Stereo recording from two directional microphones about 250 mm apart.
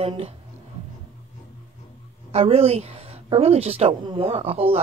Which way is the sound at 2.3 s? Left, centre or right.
Right.